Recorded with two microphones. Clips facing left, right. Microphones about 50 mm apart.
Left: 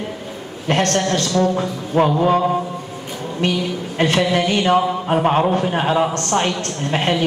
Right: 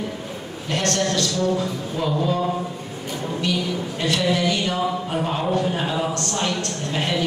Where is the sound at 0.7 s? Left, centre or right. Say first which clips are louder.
Left 5 dB; left.